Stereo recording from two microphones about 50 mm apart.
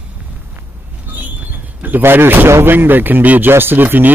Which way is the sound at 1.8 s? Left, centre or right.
Right.